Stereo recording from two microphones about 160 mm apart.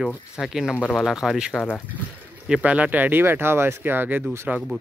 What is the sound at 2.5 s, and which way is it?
Speech, 10° right (ahead or behind).